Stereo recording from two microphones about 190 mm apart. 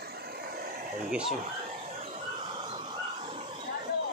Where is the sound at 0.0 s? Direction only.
55° right (ahead or behind).